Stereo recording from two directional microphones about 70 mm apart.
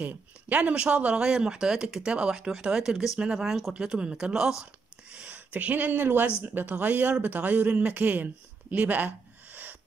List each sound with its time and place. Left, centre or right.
0.0 s speech: right
5.1 s speech: right